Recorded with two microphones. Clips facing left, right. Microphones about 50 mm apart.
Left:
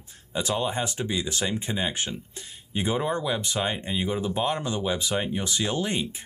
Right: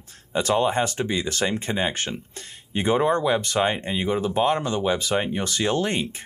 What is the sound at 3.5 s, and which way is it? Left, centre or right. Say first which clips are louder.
Speech: right 5 dB; right.